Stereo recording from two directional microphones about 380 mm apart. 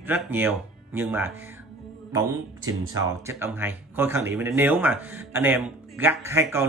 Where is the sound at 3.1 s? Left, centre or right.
Centre.